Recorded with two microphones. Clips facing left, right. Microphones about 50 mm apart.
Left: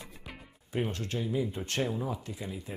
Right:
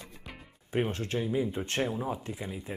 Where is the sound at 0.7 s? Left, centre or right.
Right.